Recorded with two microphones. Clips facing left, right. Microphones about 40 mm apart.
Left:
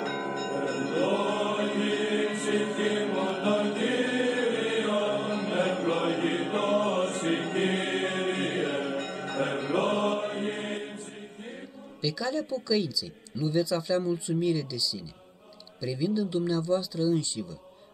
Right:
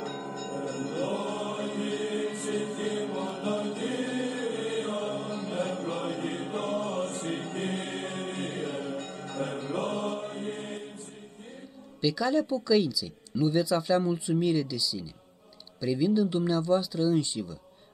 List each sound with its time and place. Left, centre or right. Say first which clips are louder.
0.0 s music: left 5 dB; left
12.0 s speech: right 4 dB; centre